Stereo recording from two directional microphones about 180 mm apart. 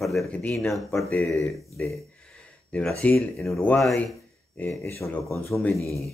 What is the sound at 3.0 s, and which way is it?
A man's voice, 5° left (ahead or behind).